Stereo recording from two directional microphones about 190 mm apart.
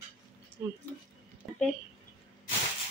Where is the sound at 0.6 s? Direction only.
10° right (ahead or behind).